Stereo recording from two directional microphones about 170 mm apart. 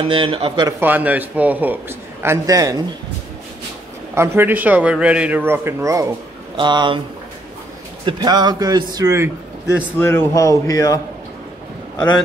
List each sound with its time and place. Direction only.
0.1 s a man's voice: 30° right (ahead or behind)
0.7 s a man's voice: 10° right (ahead or behind)
4.1 s a man's voice: 15° right (ahead or behind)
8.0 s a man's voice: 25° right (ahead or behind)
9.9 s speech: 15° left (ahead or behind)